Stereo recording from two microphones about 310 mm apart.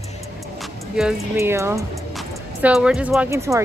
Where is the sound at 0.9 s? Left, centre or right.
Centre.